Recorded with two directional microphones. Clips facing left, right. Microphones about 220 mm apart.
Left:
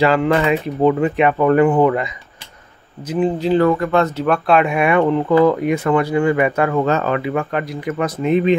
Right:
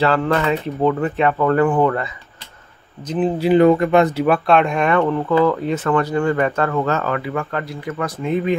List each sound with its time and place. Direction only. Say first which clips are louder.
0.0 s speech: left 2 dB; 15° left (ahead or behind)
3.2 s speech: even; 5° right (ahead or behind)
3.5 s speech: right 4 dB; 20° right (ahead or behind)
4.5 s speech: left 1 dB; 5° left (ahead or behind)